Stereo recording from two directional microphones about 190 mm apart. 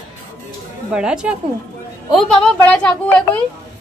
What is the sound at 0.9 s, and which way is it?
A woman's voice, 5° right (ahead or behind).